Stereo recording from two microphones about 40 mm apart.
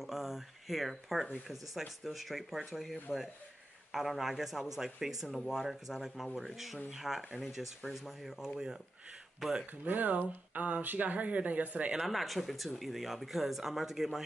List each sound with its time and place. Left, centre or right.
0.0 s a sound: centre
1.5 s speech: centre
9.8 s speech: right
12.0 s speech: centre